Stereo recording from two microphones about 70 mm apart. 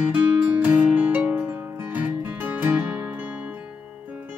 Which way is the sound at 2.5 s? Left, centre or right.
Right.